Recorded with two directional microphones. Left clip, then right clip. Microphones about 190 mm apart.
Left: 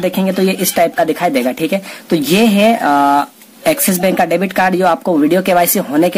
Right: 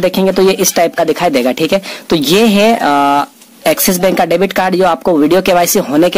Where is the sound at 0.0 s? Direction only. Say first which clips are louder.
Right 5 dB; 40° right (ahead or behind).